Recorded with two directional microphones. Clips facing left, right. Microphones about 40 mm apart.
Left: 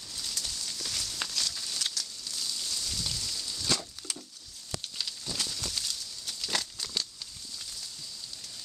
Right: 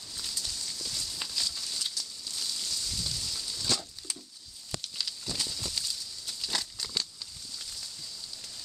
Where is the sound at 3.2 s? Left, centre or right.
Centre.